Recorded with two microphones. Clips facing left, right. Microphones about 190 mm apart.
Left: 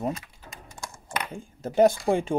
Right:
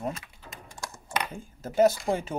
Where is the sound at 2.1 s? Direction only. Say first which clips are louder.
Left 4 dB; 20° left (ahead or behind).